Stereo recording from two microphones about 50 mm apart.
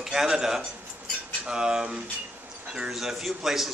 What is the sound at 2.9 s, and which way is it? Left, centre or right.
Speech, centre.